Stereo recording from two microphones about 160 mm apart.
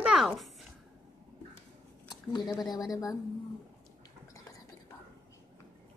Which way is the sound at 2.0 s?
25° left (ahead or behind).